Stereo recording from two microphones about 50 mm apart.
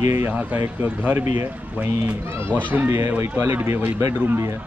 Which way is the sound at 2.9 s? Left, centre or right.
Right.